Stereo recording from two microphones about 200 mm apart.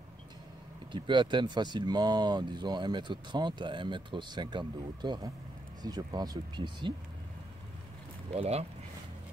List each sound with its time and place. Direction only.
0.9 s speech: 25° right (ahead or behind)
8.3 s speech: 30° right (ahead or behind)